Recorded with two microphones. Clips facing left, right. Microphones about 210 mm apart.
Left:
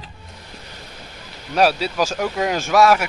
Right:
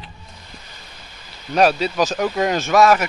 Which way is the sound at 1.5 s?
5° left (ahead or behind).